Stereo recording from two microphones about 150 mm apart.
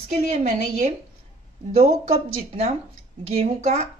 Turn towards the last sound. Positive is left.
turn(degrees=-45)  # may be behind; listen again after turning